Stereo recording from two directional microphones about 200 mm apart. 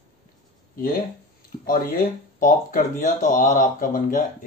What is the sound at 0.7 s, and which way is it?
Speech, 45° left (ahead or behind).